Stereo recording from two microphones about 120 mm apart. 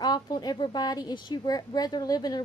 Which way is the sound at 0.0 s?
35° left (ahead or behind).